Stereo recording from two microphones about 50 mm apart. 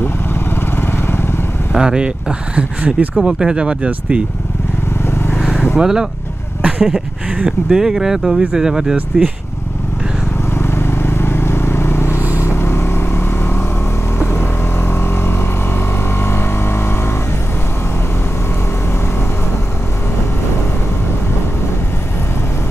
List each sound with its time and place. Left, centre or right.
0.0 s vehicle: left
1.7 s speech: centre
5.8 s speech: centre
10.5 s vehicle: left